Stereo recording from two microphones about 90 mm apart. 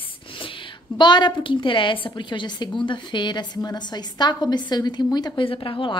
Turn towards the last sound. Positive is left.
turn(degrees=60)  # may be behind; listen again after turning